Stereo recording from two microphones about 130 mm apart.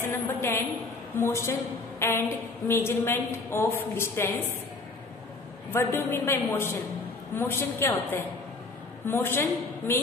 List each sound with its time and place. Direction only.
0.0 s a woman's voice: 15° left (ahead or behind)
5.7 s a woman's voice: 20° left (ahead or behind)